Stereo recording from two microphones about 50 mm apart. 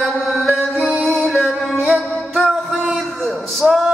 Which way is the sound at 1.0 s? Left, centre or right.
Centre.